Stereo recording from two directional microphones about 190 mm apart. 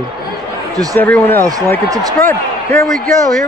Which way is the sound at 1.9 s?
20° right (ahead or behind).